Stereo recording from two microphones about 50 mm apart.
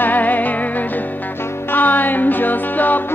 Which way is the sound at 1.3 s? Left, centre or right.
Left.